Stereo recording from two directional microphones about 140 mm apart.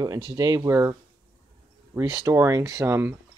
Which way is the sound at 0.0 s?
25° right (ahead or behind).